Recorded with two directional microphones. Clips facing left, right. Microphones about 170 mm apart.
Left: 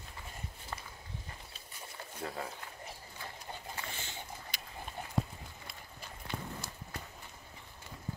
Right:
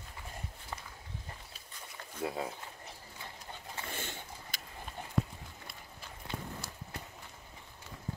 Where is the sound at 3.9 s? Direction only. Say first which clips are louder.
Right 2 dB; 55° right (ahead or behind).